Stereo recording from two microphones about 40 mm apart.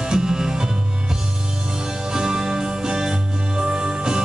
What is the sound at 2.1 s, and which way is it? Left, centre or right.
Music, centre.